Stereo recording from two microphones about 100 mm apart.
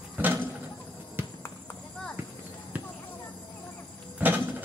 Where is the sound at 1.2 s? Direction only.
20° right (ahead or behind).